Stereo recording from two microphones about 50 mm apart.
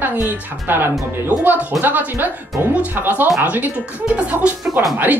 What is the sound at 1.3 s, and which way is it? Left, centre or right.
Speech, right.